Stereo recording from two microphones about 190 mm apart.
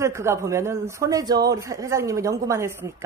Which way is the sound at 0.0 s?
15° right (ahead or behind).